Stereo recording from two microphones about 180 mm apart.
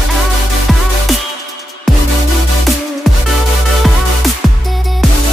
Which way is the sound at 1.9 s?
Centre (ahead or behind).